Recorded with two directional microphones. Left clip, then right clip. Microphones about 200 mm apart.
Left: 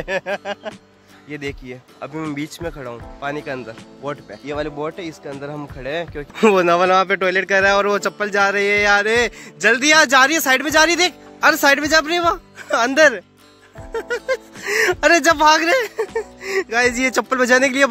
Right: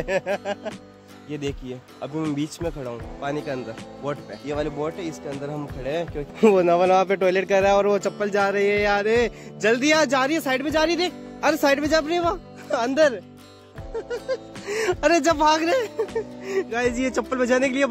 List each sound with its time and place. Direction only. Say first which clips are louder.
0.0 s speech: left 1 dB; centre (ahead or behind)
3.2 s speech: left 3 dB; 15° left (ahead or behind)
4.0 s speech: left 2 dB; 40° left (ahead or behind)
4.5 s speech: left 2 dB; 25° left (ahead or behind)
6.3 s speech: left 3 dB; centre (ahead or behind)